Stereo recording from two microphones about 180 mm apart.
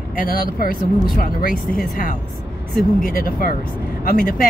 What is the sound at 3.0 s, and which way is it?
Speech, 55° left (ahead or behind).